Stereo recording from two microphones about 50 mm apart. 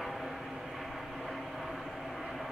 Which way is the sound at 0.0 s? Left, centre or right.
Centre.